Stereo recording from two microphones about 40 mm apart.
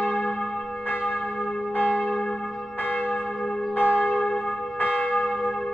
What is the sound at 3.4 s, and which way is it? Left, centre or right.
Church bell, centre.